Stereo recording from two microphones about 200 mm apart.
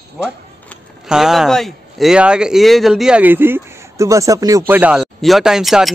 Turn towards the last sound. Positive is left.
turn(degrees=0)  # may be behind; listen again after turning